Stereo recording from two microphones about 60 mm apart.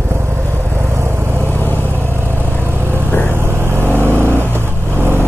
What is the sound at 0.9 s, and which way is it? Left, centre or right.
Vehicle, right.